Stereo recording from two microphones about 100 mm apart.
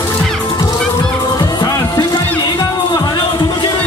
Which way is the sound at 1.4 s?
40° left (ahead or behind).